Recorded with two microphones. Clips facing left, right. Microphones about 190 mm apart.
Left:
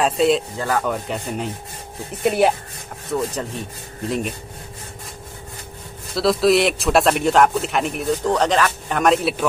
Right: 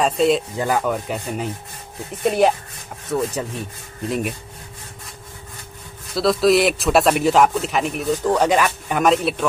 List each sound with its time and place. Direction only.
0.0 s speech: centre (ahead or behind)
0.6 s rub: 15° right (ahead or behind)
0.8 s speech: 5° right (ahead or behind)
6.1 s speech: centre (ahead or behind)